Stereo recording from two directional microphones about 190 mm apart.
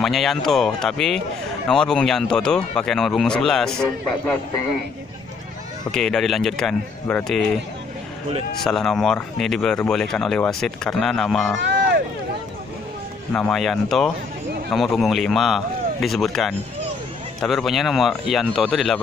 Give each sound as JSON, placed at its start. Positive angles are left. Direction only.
{"t": 0.0, "sound": "speech", "side_deg": 0}
{"t": 5.9, "sound": "speech", "side_deg": 5}
{"t": 8.6, "sound": "speech", "side_deg": 5}
{"t": 11.5, "sound": "run", "side_deg": -70}
{"t": 13.3, "sound": "speech", "side_deg": 5}